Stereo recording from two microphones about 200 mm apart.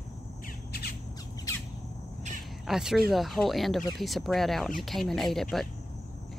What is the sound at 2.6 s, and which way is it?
Speech, centre (ahead or behind).